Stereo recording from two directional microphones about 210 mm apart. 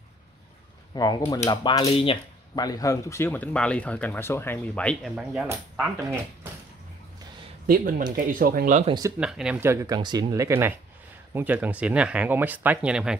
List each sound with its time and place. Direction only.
0.9 s speech: 20° left (ahead or behind); by 5.9 s 5° right (ahead or behind)
7.6 s speech: 45° right (ahead or behind)
8.8 s speech: 20° right (ahead or behind)
9.2 s speech: 5° right (ahead or behind)